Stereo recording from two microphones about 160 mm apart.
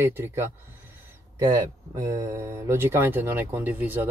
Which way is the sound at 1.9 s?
20° right (ahead or behind).